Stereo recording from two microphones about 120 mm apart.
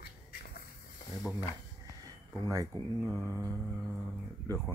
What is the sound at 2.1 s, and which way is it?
Speech, 25° right (ahead or behind).